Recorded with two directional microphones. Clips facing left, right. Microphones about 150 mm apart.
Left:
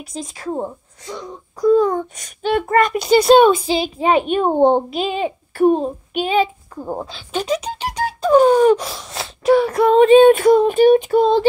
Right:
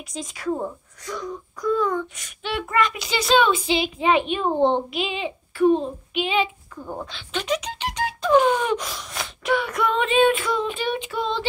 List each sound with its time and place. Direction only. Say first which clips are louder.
0.3 s a child's voice: left 1 dB; 30° left (ahead or behind)